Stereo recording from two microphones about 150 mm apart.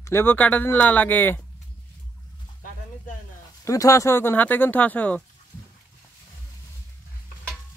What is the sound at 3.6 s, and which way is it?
Speech, 20° left (ahead or behind).